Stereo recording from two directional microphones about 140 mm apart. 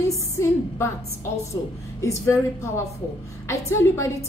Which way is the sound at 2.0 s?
20° left (ahead or behind).